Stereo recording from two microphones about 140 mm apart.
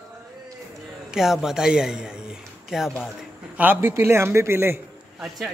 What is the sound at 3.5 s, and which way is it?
A man's voice, 15° right (ahead or behind).